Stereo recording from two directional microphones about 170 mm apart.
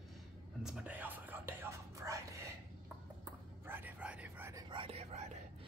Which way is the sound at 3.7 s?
10° right (ahead or behind).